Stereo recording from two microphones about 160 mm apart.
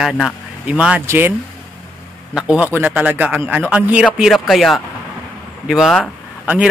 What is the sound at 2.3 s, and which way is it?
A man's voice, 5° right (ahead or behind).